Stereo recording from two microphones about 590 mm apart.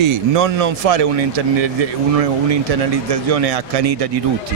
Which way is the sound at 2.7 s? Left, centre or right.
Right.